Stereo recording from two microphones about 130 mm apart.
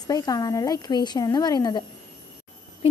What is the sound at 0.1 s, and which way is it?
A woman's voice, 30° left (ahead or behind).